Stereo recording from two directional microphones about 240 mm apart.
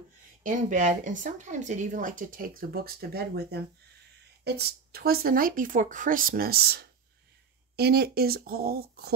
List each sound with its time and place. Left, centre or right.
0.4 s speech: right